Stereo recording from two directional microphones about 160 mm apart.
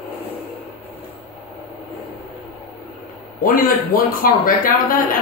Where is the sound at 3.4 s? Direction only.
60° left (ahead or behind).